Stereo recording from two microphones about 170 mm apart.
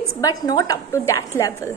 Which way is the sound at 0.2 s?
20° left (ahead or behind).